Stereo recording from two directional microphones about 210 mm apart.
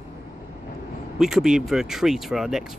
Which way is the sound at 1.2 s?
Centre (ahead or behind).